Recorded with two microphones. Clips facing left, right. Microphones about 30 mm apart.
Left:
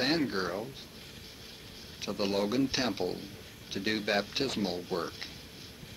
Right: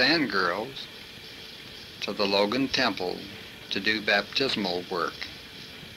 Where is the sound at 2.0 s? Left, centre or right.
Right.